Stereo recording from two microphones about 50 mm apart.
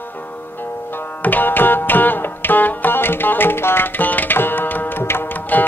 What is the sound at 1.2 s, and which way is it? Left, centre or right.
Music, left.